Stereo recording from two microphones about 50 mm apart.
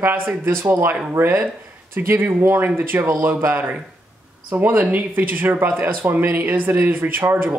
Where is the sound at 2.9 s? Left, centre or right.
Right.